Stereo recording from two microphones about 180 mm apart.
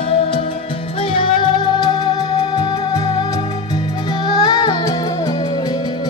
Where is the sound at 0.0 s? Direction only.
35° left (ahead or behind).